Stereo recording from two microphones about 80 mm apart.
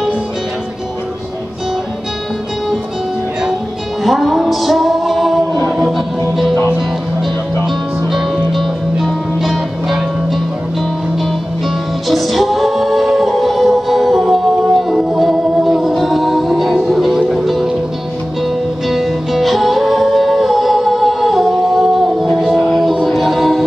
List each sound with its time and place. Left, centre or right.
4.0 s music: centre
7.6 s music: centre
12.1 s music: centre
18.9 s music: centre